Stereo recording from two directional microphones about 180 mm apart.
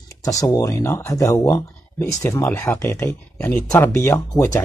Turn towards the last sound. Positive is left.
turn(degrees=15)  # may be behind; listen again after turning